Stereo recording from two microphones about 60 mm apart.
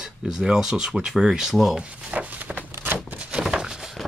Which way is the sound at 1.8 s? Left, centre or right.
Centre.